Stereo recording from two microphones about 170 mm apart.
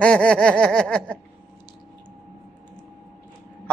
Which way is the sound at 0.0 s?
5° left (ahead or behind).